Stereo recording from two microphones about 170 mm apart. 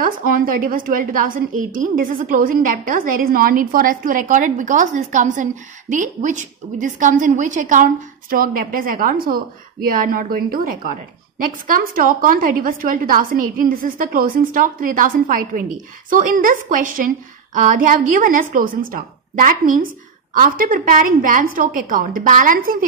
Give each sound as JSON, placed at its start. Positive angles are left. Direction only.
{"t": 0.0, "sound": "a woman's voice", "side_deg": -55}